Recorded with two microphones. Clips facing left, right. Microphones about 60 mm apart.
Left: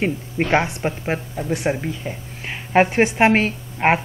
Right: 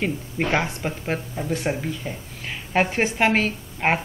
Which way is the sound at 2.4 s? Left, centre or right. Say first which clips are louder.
Left 6 dB; left.